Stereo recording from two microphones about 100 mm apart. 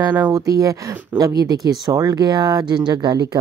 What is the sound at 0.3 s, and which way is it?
Speech, 35° right (ahead or behind).